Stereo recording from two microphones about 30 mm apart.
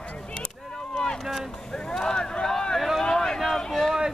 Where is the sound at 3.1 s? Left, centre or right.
Centre.